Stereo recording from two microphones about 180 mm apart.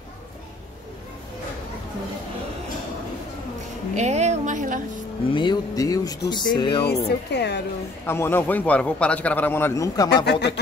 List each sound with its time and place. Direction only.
3.9 s music: 40° right (ahead or behind)
5.3 s speech: 25° left (ahead or behind)
7.1 s a woman's voice: 70° left (ahead or behind)
8.1 s a man's voice: 10° left (ahead or behind)
10.0 s a woman's voice: 70° left (ahead or behind)